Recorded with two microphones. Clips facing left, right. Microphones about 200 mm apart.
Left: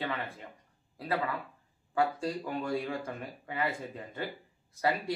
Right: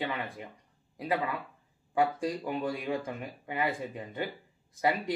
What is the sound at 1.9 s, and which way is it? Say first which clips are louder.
Speech: right 2 dB; 15° right (ahead or behind).